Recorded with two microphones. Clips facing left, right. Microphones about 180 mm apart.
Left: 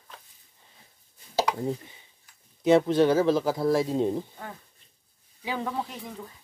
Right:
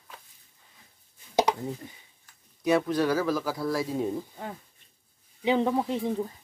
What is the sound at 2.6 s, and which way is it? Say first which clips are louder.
Speech: left 4 dB; 25° left (ahead or behind).